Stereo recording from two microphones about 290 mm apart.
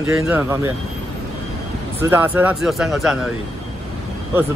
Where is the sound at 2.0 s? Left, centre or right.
Centre.